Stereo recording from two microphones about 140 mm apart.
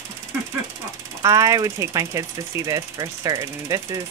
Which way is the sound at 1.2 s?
25° right (ahead or behind).